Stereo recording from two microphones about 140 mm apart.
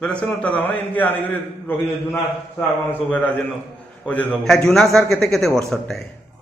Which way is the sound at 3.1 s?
10° left (ahead or behind).